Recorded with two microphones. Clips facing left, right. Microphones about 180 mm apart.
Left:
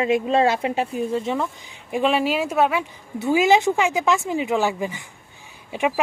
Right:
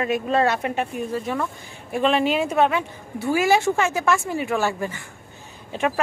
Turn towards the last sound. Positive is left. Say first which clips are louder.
# left 1 dB
turn(degrees=10)  # may be behind; listen again after turning